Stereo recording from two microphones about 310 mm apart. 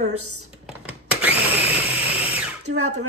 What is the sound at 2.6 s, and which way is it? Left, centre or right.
Speech, right.